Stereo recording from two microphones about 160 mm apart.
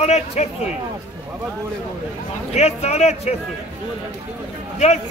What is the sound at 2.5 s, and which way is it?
Speech, 45° left (ahead or behind).